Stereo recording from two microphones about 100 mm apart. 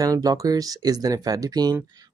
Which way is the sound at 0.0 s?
40° right (ahead or behind).